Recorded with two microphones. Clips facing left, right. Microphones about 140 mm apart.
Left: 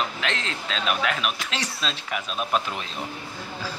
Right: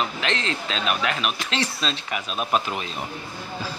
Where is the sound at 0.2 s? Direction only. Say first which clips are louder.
Right 3 dB; centre (ahead or behind).